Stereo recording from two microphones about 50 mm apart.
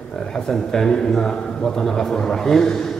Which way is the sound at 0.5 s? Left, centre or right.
Centre.